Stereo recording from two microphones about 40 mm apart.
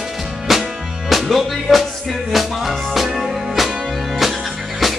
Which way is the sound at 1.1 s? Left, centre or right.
Centre.